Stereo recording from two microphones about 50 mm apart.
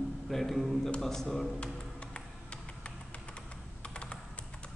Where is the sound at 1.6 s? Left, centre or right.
Left.